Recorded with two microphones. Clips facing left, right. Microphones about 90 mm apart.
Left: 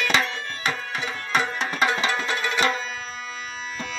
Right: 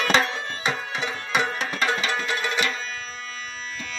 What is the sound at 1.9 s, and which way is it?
Music, 20° left (ahead or behind).